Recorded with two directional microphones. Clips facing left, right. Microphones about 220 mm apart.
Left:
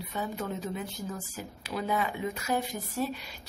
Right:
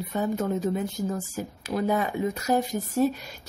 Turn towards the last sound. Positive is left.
turn(degrees=-45)  # may be behind; listen again after turning